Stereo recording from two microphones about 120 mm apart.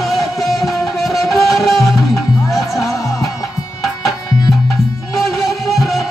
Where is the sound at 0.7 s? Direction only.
Centre (ahead or behind).